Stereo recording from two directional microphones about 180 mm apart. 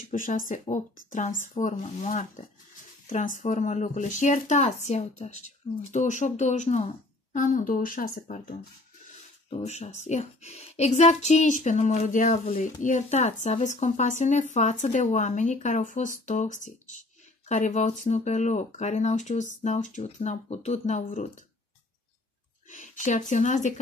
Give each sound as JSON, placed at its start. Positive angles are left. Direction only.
{"t": 0.1, "sound": "speech", "side_deg": 50}
{"t": 9.5, "sound": "speech", "side_deg": 40}
{"t": 22.7, "sound": "speech", "side_deg": 45}